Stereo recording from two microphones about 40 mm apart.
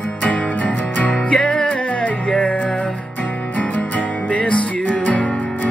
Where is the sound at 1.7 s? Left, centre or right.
Left.